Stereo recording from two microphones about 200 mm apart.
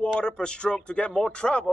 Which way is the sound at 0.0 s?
5° left (ahead or behind).